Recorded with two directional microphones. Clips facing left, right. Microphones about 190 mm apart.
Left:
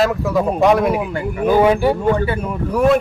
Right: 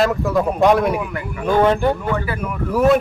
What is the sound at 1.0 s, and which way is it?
Speech, 30° left (ahead or behind).